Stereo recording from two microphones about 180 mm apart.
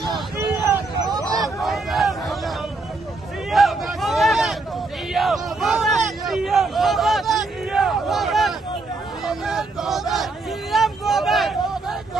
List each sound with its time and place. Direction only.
1.0 s hubbub: 20° right (ahead or behind)
1.4 s a sound: centre (ahead or behind)
10.7 s vehicle: centre (ahead or behind)